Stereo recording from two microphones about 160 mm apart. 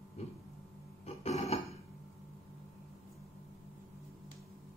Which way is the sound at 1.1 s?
40° left (ahead or behind).